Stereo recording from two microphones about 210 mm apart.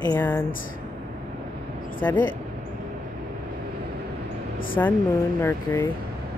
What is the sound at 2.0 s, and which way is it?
Speech, 5° left (ahead or behind).